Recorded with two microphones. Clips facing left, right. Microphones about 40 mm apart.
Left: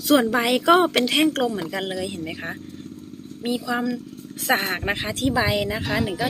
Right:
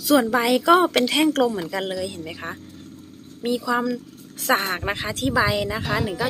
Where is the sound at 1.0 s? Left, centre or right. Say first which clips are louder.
Right 1 dB; centre.